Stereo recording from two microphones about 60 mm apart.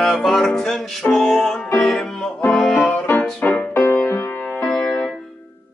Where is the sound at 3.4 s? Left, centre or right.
Left.